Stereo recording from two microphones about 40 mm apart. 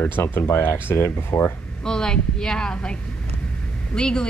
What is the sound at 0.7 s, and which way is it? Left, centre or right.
Speech, left.